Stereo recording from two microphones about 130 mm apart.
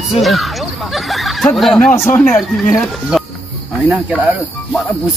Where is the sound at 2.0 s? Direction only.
15° left (ahead or behind).